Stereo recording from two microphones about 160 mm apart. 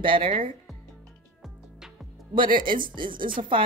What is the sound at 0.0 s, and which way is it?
Speech, 30° right (ahead or behind).